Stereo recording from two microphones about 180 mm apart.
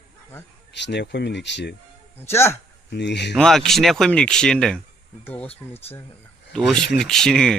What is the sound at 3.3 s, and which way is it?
A man's voice, centre (ahead or behind).